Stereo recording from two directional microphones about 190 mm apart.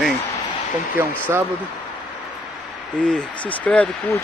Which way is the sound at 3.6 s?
5° left (ahead or behind).